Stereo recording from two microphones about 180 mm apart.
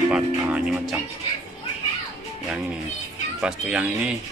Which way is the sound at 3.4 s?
5° right (ahead or behind).